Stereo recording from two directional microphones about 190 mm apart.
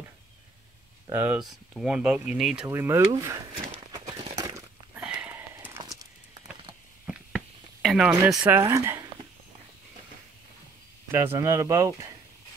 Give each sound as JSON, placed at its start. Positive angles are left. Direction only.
{"t": 1.0, "sound": "speech", "side_deg": -10}
{"t": 4.1, "sound": "a sound", "side_deg": -20}
{"t": 5.0, "sound": "sniff", "side_deg": -5}
{"t": 7.1, "sound": "a sound", "side_deg": -5}
{"t": 8.4, "sound": "speech", "side_deg": -15}
{"t": 11.1, "sound": "speech", "side_deg": -15}